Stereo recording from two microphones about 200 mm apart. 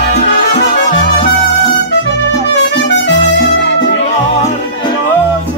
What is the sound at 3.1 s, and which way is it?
Music, 65° left (ahead or behind).